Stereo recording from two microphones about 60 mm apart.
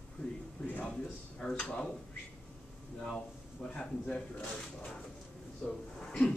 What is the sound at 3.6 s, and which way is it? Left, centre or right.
A man's voice, centre.